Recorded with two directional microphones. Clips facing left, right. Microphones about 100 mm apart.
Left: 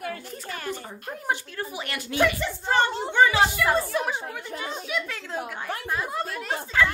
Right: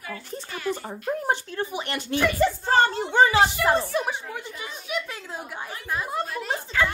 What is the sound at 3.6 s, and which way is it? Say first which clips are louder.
Speech: right 1 dB; 25° right (ahead or behind).